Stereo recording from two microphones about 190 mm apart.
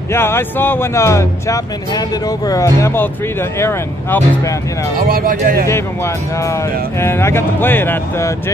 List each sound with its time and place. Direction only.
0.1 s speech: 10° left (ahead or behind)
5.0 s speech: 50° right (ahead or behind)
5.7 s speech: 15° left (ahead or behind)